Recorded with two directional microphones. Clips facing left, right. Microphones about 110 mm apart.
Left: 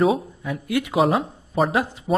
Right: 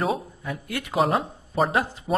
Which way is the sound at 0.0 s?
Centre (ahead or behind).